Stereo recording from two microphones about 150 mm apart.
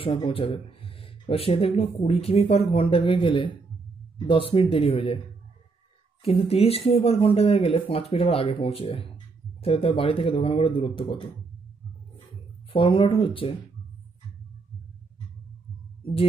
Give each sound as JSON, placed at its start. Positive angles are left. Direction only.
{"t": 0.0, "sound": "speech", "side_deg": 35}
{"t": 6.2, "sound": "speech", "side_deg": 40}
{"t": 12.7, "sound": "speech", "side_deg": 35}